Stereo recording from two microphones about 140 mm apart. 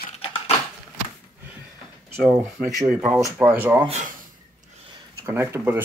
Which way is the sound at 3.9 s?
60° right (ahead or behind).